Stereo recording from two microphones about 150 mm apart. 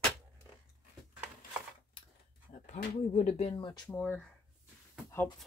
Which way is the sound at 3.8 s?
10° left (ahead or behind).